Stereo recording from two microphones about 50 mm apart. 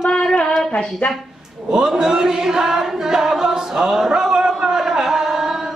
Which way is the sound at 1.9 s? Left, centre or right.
Centre.